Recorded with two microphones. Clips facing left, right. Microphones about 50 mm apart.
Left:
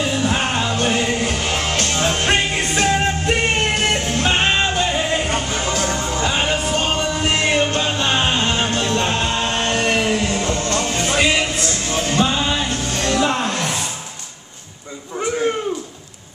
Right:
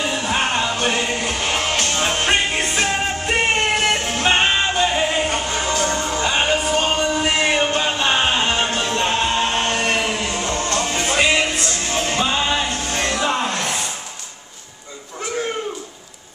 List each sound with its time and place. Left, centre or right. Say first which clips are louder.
0.0 s music: left 1 dB; centre
9.7 s chant: left 2 dB; centre
10.2 s music: left 2 dB; centre
13.2 s music: left 1 dB; centre